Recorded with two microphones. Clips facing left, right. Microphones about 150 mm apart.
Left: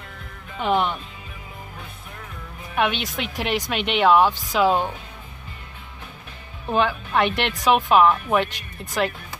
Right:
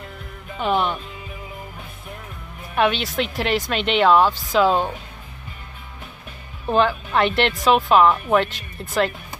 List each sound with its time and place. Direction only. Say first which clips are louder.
0.6 s speech: even; 20° left (ahead or behind)
2.8 s speech: right 3 dB; 15° left (ahead or behind)
6.7 s speech: right 3 dB; 10° left (ahead or behind)